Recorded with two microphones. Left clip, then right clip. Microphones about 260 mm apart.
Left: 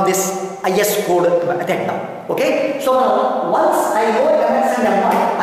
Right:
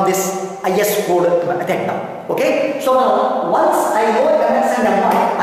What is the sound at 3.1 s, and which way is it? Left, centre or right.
Speech, left.